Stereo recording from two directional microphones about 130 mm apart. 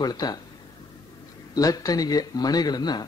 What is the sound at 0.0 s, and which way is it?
Speech, 30° left (ahead or behind).